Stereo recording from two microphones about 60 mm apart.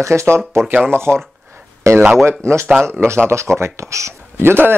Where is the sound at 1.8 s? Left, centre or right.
Right.